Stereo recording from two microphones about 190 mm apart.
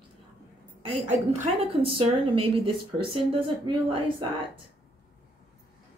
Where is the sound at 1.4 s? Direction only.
30° right (ahead or behind).